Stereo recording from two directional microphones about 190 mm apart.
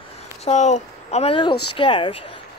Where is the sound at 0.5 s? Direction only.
35° left (ahead or behind).